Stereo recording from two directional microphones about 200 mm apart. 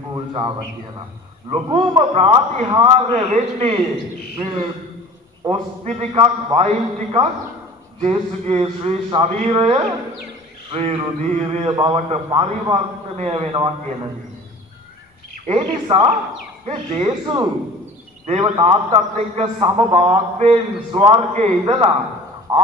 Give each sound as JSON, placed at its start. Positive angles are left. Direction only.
{"t": 0.1, "sound": "a sound", "side_deg": -20}
{"t": 1.5, "sound": "a man's voice", "side_deg": -25}
{"t": 5.4, "sound": "a man's voice", "side_deg": -30}
{"t": 15.4, "sound": "a man's voice", "side_deg": -25}
{"t": 18.2, "sound": "a man's voice", "side_deg": -30}